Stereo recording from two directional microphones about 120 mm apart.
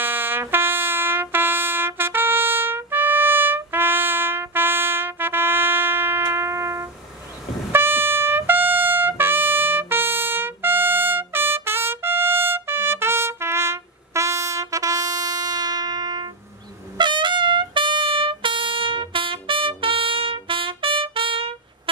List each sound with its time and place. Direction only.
0.0 s trumpet: 15° right (ahead or behind); by 21.5 s 45° right (ahead or behind)